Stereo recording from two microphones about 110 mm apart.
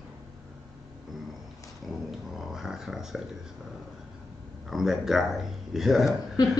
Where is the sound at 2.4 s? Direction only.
5° right (ahead or behind).